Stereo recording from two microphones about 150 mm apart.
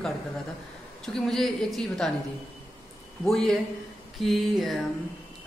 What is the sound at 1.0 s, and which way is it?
Speech, 5° left (ahead or behind).